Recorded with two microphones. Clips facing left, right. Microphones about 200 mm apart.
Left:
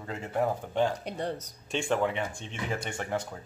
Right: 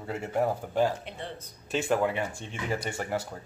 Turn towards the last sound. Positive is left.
turn(degrees=-5)  # may be behind; listen again after turning